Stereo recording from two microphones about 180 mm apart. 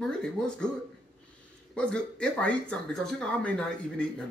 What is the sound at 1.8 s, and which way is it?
Speech, 5° left (ahead or behind).